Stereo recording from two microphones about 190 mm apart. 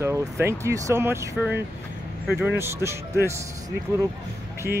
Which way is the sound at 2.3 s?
5° right (ahead or behind).